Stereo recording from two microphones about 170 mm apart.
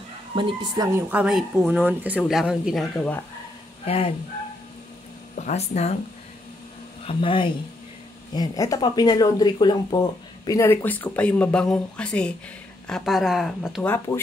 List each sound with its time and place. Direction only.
0.3 s a woman's voice: 30° right (ahead or behind)
0.9 s speech: 10° right (ahead or behind)
3.8 s speech: 35° left (ahead or behind)
5.3 s speech: 45° left (ahead or behind)
7.1 s speech: 30° left (ahead or behind); by 13.8 s centre (ahead or behind)
13.8 s speech: 15° left (ahead or behind)